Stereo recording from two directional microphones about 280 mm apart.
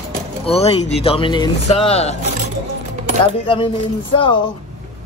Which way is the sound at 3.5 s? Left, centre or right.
Centre.